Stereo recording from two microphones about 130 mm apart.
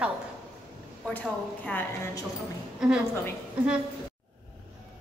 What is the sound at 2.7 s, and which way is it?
Speech, 5° right (ahead or behind).